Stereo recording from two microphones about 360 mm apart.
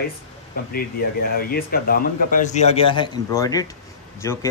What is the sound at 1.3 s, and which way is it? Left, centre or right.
A man's voice, left.